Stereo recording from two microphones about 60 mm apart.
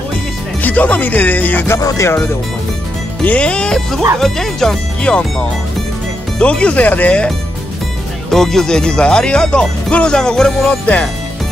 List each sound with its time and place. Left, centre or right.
0.6 s speech: left
1.8 s speech: left
3.3 s speech: centre
5.1 s speech: centre
6.3 s speech: centre
8.3 s speech: centre